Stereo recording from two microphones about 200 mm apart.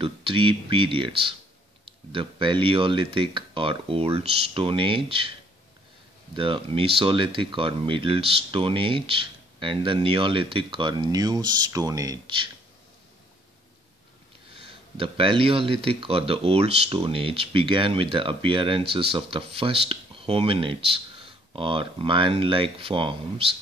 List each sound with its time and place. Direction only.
0.0 s speech: 25° right (ahead or behind)
6.3 s speech: 25° right (ahead or behind)
15.0 s speech: 25° right (ahead or behind)